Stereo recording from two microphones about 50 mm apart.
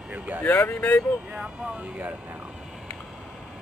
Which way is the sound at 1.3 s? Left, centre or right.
Centre.